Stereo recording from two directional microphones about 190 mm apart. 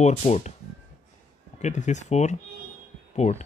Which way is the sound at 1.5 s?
40° left (ahead or behind).